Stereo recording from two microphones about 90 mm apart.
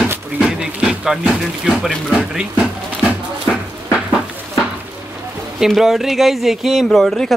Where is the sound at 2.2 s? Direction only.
10° right (ahead or behind).